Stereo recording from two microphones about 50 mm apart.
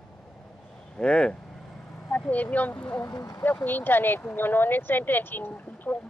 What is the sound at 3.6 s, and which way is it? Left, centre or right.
Speech, left.